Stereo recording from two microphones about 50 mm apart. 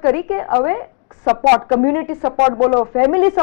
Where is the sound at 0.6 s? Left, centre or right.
Centre.